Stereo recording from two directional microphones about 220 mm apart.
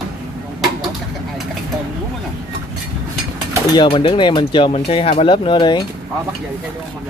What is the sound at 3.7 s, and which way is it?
Speech, 20° left (ahead or behind).